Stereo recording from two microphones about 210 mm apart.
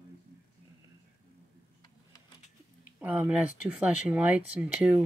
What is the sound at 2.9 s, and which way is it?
Speech, 5° right (ahead or behind).